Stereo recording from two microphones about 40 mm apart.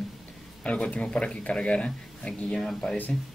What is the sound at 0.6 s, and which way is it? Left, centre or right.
A man's voice, left.